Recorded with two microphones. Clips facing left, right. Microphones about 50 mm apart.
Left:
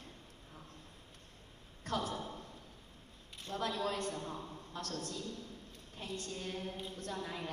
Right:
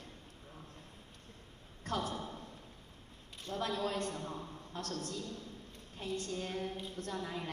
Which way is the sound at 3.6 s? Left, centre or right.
Right.